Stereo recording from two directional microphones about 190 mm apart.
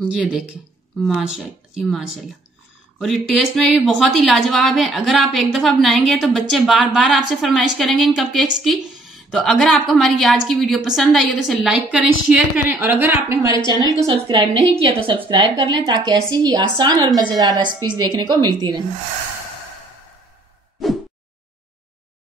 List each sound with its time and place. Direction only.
0.0 s a woman's voice: 5° right (ahead or behind); by 18.8 s 20° right (ahead or behind)